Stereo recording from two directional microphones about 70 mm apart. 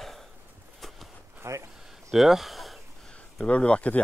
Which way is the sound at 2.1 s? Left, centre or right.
Centre.